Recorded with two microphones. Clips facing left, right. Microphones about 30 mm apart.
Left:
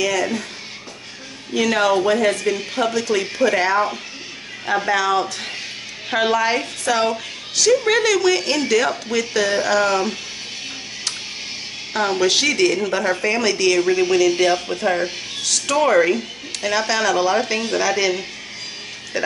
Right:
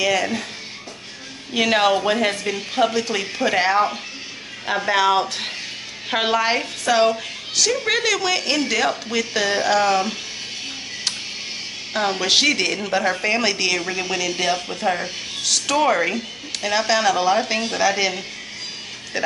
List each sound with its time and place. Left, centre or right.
0.0 s speech: centre
1.5 s speech: right
4.9 s speech: right; by 10.1 s centre
11.9 s speech: centre
13.7 s speech: centre
15.4 s speech: centre